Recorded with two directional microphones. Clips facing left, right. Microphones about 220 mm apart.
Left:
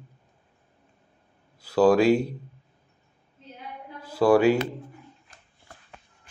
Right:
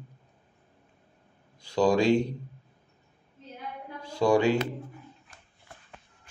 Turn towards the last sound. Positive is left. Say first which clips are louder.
# left 4 dB
turn(degrees=5)  # may be behind; listen again after turning